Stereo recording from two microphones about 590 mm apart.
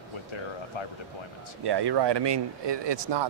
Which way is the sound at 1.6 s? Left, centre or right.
Right.